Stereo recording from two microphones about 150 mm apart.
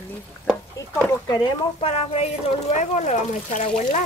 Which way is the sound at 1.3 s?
35° left (ahead or behind).